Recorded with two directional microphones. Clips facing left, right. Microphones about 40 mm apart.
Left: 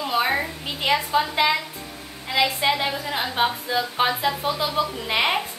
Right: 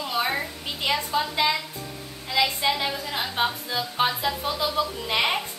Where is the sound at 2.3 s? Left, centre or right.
Left.